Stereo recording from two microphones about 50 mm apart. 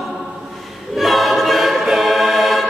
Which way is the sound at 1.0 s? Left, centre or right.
Centre.